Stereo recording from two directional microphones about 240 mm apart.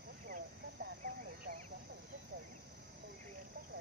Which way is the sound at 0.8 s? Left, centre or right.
Right.